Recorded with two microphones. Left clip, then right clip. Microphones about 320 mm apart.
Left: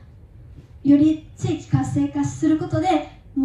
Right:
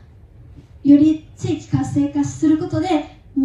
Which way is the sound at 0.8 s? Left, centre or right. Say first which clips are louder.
Right 3 dB; centre.